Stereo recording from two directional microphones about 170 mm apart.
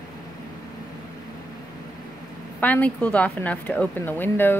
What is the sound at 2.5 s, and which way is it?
A woman's voice, 10° left (ahead or behind).